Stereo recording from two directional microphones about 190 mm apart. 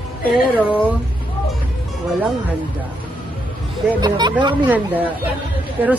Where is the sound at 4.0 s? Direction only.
20° right (ahead or behind).